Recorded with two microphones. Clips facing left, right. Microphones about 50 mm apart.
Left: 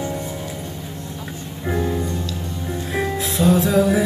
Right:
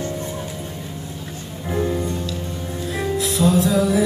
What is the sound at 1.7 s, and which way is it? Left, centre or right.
Music, centre.